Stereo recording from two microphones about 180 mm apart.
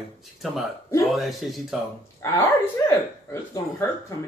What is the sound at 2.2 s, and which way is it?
Speech, 15° left (ahead or behind).